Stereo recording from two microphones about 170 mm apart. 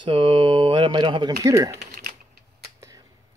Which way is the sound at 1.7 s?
65° right (ahead or behind).